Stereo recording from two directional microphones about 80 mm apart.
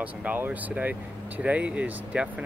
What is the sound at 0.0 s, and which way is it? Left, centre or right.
Speech, centre.